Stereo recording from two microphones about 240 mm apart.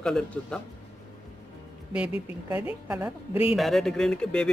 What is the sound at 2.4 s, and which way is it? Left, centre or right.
A woman's voice, centre.